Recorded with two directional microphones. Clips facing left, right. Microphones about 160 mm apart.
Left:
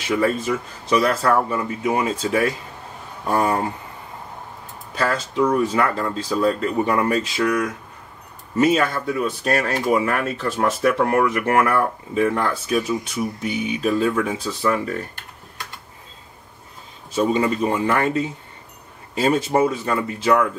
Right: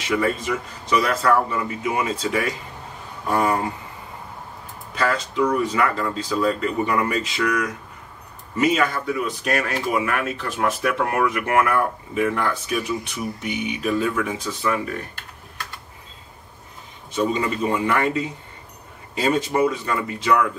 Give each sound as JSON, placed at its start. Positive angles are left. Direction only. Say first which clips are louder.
{"t": 0.1, "sound": "speech", "louder": "left 2 dB", "side_deg": 30}
{"t": 4.9, "sound": "speech", "louder": "left 1 dB", "side_deg": 30}
{"t": 17.3, "sound": "speech", "louder": "left 5 dB", "side_deg": 30}
{"t": 19.1, "sound": "speech", "louder": "left 2 dB", "side_deg": 30}